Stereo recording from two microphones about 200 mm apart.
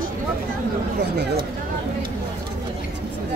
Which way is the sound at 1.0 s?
55° right (ahead or behind).